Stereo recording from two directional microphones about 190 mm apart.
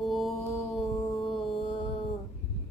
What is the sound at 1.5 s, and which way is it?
Mantra, 25° left (ahead or behind).